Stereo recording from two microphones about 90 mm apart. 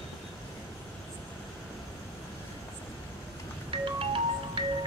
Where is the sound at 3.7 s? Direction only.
75° right (ahead or behind).